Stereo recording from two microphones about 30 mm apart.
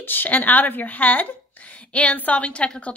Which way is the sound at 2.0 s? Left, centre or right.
Left.